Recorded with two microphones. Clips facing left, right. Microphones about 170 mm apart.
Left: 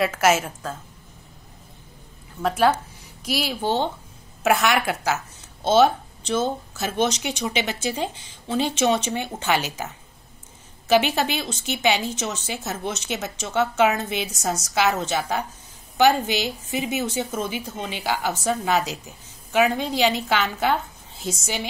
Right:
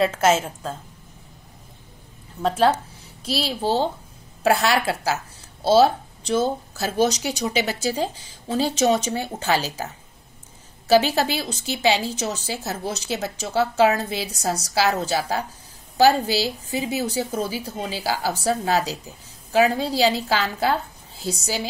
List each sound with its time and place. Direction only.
0.0 s a woman's voice: 30° right (ahead or behind)
2.4 s a woman's voice: 35° right (ahead or behind)
10.9 s a woman's voice: 35° right (ahead or behind)